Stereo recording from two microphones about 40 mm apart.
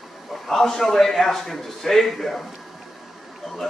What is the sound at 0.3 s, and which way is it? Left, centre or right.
A man's voice, centre.